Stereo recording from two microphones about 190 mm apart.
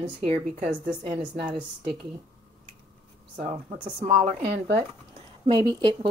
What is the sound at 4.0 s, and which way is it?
A woman's voice, 35° right (ahead or behind).